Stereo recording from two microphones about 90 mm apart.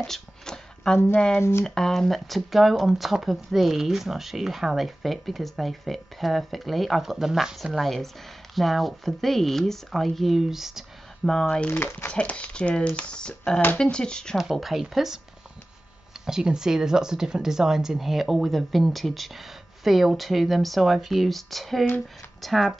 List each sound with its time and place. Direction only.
0.0 s a sound: 5° left (ahead or behind)
1.4 s speech: 30° left (ahead or behind)
1.8 s speech: 5° left (ahead or behind)
11.5 s speech: 10° left (ahead or behind)
11.8 s speech: 25° left (ahead or behind)
12.1 s speech: 15° left (ahead or behind)
14.4 s speech: centre (ahead or behind)
16.3 s speech: 5° right (ahead or behind)